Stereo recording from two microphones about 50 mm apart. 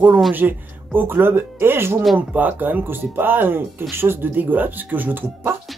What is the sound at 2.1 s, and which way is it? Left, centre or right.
Speech, right.